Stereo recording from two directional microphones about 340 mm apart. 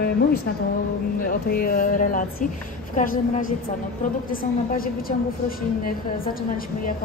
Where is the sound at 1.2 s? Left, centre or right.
Left.